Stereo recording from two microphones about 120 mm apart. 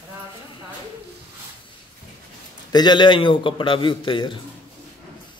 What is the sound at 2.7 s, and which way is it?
A man's voice, 40° left (ahead or behind).